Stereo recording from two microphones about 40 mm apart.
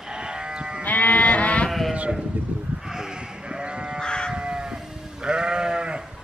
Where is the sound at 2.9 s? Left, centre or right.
Centre.